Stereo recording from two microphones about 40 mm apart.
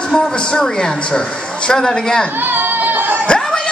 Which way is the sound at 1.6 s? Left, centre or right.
Left.